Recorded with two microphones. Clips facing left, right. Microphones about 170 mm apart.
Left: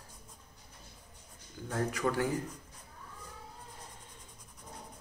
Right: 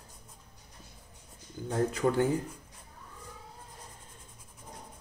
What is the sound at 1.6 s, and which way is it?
Speech, 25° right (ahead or behind).